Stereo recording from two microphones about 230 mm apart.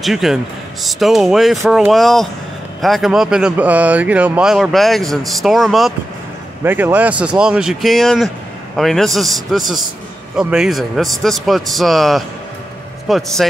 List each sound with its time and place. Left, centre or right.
0.0 s speech: centre